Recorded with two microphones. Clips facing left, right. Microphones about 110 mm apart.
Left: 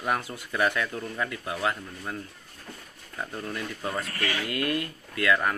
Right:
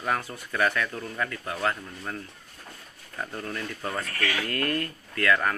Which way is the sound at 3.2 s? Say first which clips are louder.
Even; 10° left (ahead or behind).